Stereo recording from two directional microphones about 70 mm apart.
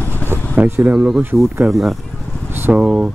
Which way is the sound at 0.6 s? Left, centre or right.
Right.